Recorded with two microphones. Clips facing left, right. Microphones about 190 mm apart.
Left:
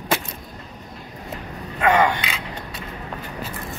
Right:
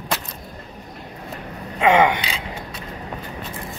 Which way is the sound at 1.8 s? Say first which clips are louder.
Right 2 dB; 20° right (ahead or behind).